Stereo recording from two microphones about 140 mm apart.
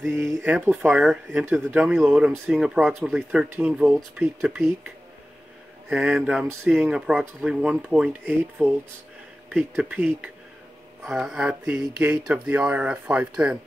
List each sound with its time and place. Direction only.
0.2 s speech: 10° right (ahead or behind)
1.8 s speech: centre (ahead or behind)
9.8 s speech: 10° right (ahead or behind)